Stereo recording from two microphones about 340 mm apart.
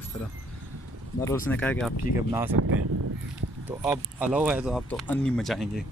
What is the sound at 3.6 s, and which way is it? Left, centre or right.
Speech, centre.